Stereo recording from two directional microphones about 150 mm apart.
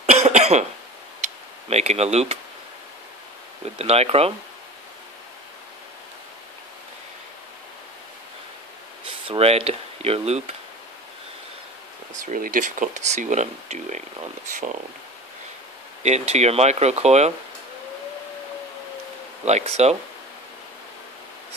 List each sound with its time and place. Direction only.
0.0 s cough: 50° right (ahead or behind)
1.2 s tick: 45° right (ahead or behind)
3.7 s speech: 45° right (ahead or behind)
9.0 s speech: 40° right (ahead or behind)
12.1 s speech: 60° right (ahead or behind)
16.0 s speech: 50° right (ahead or behind)
19.4 s speech: 45° right (ahead or behind)